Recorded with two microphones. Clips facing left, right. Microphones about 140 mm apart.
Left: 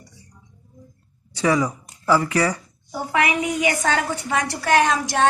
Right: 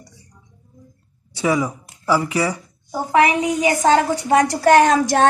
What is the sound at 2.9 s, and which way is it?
A woman's voice, 35° right (ahead or behind).